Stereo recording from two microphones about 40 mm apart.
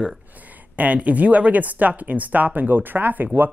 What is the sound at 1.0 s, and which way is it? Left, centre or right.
Speech, right.